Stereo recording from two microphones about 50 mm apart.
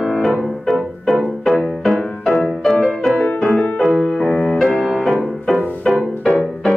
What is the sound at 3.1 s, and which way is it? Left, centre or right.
Music, left.